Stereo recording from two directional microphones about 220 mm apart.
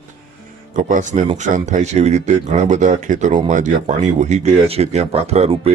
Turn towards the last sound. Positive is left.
turn(degrees=-25)  # may be behind; listen again after turning